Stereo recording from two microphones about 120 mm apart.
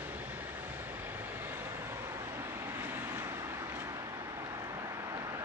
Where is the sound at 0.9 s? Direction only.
15° right (ahead or behind).